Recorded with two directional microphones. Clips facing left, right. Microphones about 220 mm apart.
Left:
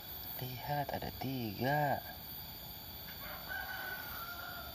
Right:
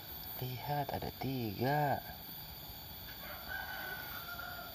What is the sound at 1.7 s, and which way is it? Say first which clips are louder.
Speech: left 1 dB; 15° left (ahead or behind).